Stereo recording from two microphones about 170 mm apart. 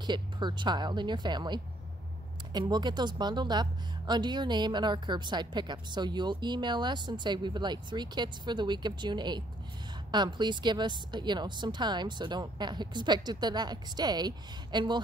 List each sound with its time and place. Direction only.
0.0 s speech: 25° right (ahead or behind)